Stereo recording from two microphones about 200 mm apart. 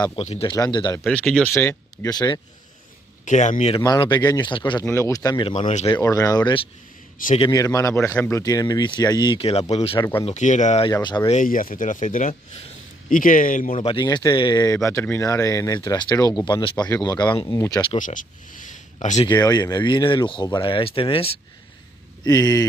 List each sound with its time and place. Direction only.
0.2 s speech: 30° left (ahead or behind)
1.0 s speech: 5° left (ahead or behind); by 2.4 s 20° left (ahead or behind)
3.3 s speech: 35° left (ahead or behind)
3.7 s speech: 20° left (ahead or behind)
5.5 s speech: 35° left (ahead or behind)
5.9 s speech: 15° left (ahead or behind); by 10.9 s 35° left (ahead or behind)
10.9 s speech: 20° left (ahead or behind)
11.3 s speech: 45° left (ahead or behind)
13.7 s speech: 25° left (ahead or behind)
17.9 s speech: 40° left (ahead or behind)
19.2 s speech: 20° left (ahead or behind)